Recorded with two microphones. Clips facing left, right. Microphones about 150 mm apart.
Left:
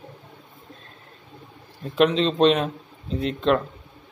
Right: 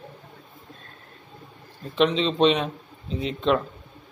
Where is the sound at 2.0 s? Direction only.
5° left (ahead or behind).